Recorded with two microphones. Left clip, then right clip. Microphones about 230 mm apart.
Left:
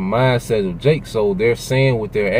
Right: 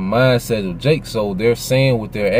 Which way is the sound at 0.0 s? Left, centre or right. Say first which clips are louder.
Right 2 dB; centre.